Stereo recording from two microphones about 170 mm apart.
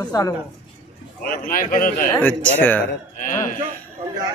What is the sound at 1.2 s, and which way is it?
Speech, 55° left (ahead or behind).